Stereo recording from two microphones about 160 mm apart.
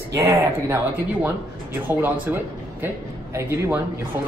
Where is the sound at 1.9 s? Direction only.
10° right (ahead or behind).